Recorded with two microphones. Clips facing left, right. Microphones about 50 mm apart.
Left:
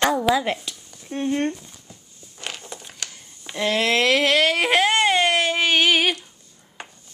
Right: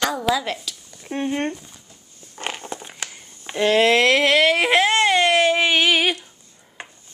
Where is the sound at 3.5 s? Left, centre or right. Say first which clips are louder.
Right 5 dB; right.